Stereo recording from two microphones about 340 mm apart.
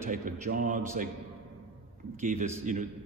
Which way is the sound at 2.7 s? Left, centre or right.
Right.